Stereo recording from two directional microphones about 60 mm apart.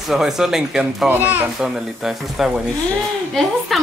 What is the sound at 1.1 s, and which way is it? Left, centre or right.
Speech, right.